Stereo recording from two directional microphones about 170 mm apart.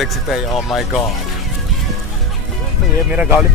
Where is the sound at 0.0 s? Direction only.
Centre (ahead or behind).